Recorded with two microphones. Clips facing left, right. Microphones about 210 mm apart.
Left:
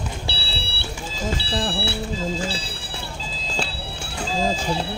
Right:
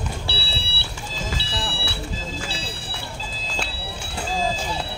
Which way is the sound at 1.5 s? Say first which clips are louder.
Left 6 dB; 40° left (ahead or behind).